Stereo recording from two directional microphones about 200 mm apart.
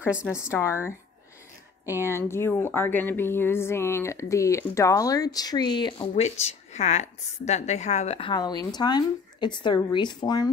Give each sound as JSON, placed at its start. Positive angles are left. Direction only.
{"t": 0.0, "sound": "speech", "side_deg": -5}
{"t": 0.5, "sound": "speech", "side_deg": 15}
{"t": 1.9, "sound": "a woman's voice", "side_deg": -10}
{"t": 2.1, "sound": "speech", "side_deg": 10}
{"t": 6.2, "sound": "a woman's voice", "side_deg": 35}